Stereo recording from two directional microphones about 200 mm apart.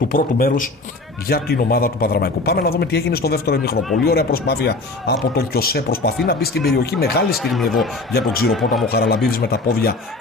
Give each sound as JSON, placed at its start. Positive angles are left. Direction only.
{"t": 0.1, "sound": "speech", "side_deg": 45}
{"t": 7.3, "sound": "speech", "side_deg": 0}
{"t": 8.1, "sound": "speech", "side_deg": 50}